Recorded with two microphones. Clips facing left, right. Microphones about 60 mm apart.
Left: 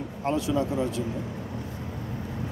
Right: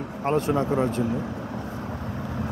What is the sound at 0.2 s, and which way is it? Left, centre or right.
Speech, right.